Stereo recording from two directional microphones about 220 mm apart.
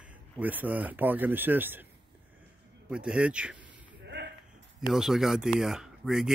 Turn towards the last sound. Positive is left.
turn(degrees=0)  # may be behind; listen again after turning